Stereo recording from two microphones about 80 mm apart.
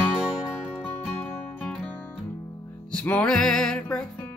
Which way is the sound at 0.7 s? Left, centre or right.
Centre.